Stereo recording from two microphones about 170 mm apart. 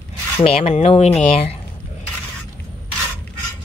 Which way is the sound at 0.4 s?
35° left (ahead or behind).